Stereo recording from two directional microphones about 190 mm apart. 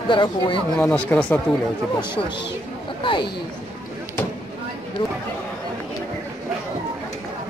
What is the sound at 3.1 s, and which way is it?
Speech, 25° left (ahead or behind).